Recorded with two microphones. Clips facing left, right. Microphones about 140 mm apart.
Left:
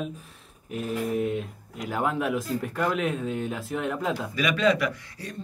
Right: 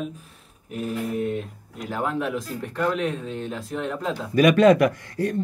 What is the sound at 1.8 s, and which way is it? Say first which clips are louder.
Speech: even; 10° left (ahead or behind).